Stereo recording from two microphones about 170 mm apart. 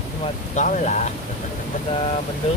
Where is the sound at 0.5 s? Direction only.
45° left (ahead or behind).